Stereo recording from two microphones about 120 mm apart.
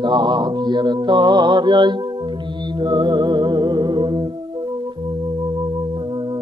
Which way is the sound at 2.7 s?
40° right (ahead or behind).